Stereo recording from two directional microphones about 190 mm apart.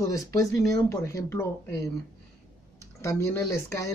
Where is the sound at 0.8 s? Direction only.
15° left (ahead or behind).